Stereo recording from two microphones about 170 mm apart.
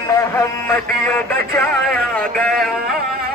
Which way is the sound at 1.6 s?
5° left (ahead or behind).